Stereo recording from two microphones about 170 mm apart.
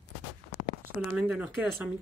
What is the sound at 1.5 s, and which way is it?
Speech, centre (ahead or behind).